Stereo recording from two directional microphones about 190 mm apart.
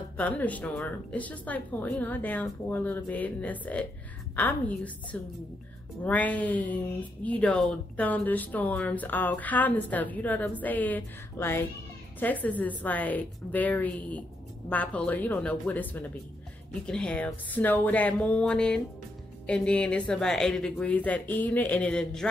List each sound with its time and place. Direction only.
0.2 s speech: 10° left (ahead or behind)